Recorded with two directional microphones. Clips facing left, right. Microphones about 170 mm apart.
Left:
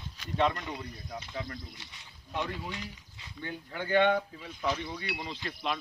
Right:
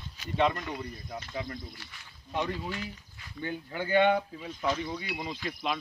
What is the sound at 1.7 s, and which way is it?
Speech, 20° left (ahead or behind).